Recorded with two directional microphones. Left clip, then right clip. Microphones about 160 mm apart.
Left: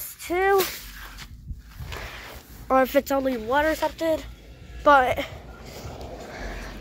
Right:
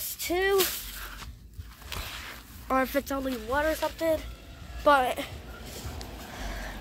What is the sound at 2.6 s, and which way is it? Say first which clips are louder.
Speech: left 7 dB; 20° left (ahead or behind).